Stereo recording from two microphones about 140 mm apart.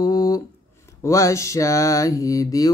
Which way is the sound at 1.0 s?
20° left (ahead or behind).